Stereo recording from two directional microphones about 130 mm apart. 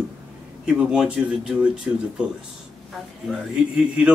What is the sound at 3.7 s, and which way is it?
Speech, 10° right (ahead or behind).